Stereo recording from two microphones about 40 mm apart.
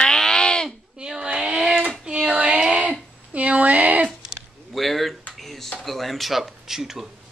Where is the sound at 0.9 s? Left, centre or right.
Centre.